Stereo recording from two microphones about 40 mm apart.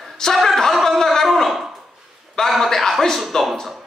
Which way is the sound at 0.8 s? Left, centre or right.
Centre.